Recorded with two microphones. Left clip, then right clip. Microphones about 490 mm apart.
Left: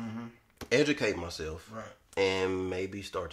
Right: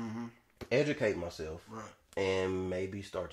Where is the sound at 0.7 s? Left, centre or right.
Right.